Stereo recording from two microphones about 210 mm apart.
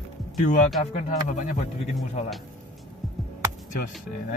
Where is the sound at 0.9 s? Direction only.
35° left (ahead or behind).